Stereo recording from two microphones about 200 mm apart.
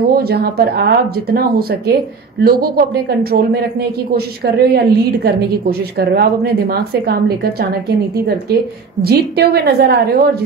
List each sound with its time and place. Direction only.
0.3 s a woman's voice: 55° right (ahead or behind)
4.5 s a woman's voice: 50° right (ahead or behind)
9.0 s a woman's voice: 50° right (ahead or behind)